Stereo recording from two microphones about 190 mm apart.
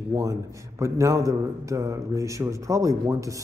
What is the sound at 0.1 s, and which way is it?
Speech, 15° right (ahead or behind).